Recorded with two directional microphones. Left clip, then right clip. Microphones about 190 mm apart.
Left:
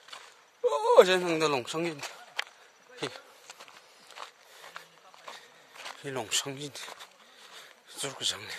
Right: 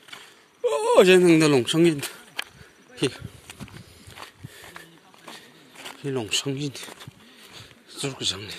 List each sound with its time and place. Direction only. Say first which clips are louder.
0.7 s speech: right 4 dB; centre (ahead or behind)
2.0 s a sound: right 4 dB; 60° right (ahead or behind)
3.4 s horse: right 5 dB; 55° right (ahead or behind)
4.7 s a sound: right 3 dB; 55° right (ahead or behind)
5.9 s speech: right 6 dB; 30° left (ahead or behind)
7.9 s a man's voice: right 5 dB; 25° left (ahead or behind)